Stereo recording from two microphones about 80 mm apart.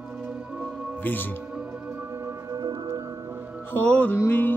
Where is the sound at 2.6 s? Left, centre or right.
Right.